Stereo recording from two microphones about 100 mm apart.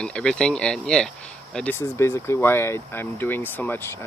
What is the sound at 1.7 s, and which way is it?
Speech, 25° left (ahead or behind).